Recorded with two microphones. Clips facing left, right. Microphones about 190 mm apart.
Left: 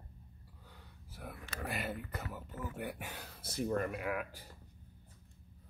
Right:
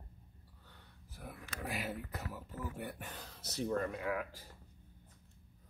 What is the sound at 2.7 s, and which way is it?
Speech, 10° left (ahead or behind).